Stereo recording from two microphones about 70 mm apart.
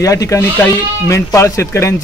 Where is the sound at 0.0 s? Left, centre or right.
Left.